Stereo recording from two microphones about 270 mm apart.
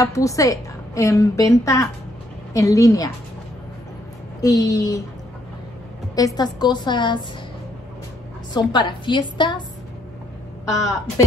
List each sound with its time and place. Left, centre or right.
0.0 s a woman's voice: centre
4.4 s a woman's voice: centre
6.1 s a woman's voice: centre
8.5 s a woman's voice: centre
10.7 s a woman's voice: centre